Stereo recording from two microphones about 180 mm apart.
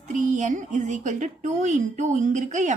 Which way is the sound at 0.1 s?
45° right (ahead or behind).